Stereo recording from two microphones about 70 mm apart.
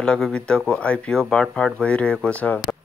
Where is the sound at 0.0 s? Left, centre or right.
Centre.